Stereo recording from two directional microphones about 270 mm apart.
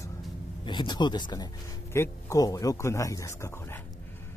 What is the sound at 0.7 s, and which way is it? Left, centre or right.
Speech, centre.